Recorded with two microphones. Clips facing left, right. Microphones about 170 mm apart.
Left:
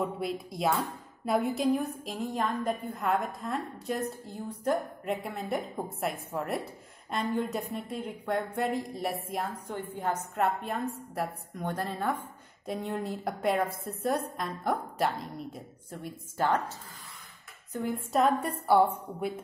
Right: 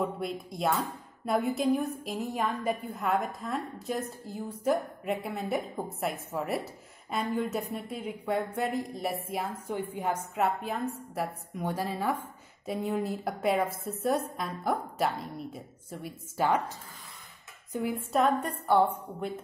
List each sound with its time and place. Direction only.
0.0 s a woman's voice: centre (ahead or behind)
17.7 s a woman's voice: 5° right (ahead or behind)